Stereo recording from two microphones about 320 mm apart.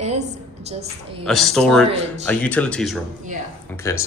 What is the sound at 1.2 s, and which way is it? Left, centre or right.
A man's voice, centre.